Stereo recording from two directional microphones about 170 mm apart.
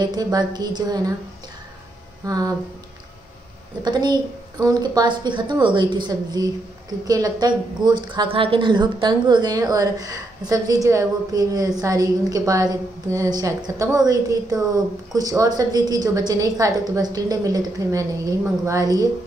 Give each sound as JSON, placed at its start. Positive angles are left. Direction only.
{"t": 0.0, "sound": "a woman's voice", "side_deg": -25}
{"t": 2.2, "sound": "a woman's voice", "side_deg": -20}
{"t": 3.8, "sound": "a woman's voice", "side_deg": -25}